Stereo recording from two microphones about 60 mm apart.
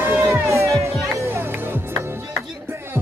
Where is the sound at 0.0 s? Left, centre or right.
Right.